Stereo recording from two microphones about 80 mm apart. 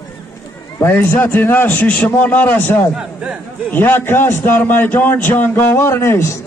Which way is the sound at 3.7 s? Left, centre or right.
Left.